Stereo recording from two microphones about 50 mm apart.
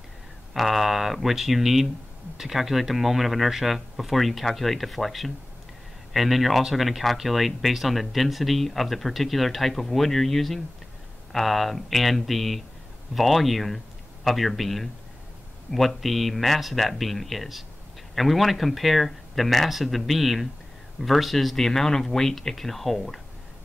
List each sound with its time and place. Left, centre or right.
0.6 s speech: centre